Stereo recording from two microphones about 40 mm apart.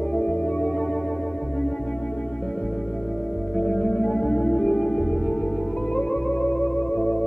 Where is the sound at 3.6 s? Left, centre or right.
Left.